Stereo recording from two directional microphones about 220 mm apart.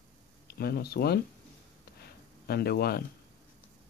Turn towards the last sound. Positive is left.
turn(degrees=45)  # may be behind; listen again after turning